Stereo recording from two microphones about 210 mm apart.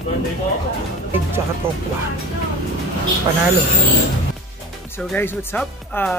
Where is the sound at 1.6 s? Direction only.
10° right (ahead or behind).